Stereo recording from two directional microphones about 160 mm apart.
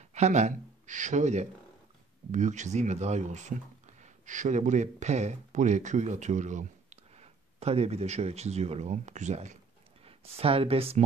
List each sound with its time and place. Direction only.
0.1 s speech: 45° right (ahead or behind)